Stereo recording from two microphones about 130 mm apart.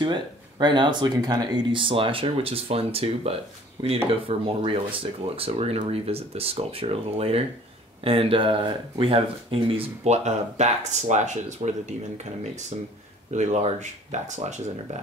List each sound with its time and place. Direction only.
0.0 s speech: 35° right (ahead or behind)
3.8 s speech: 35° right (ahead or behind)
4.1 s speech: 45° right (ahead or behind); by 14.5 s 65° right (ahead or behind)